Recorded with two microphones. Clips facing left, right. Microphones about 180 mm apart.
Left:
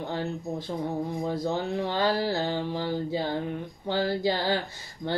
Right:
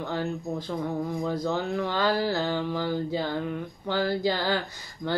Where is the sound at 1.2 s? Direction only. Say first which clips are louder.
Even; 25° left (ahead or behind).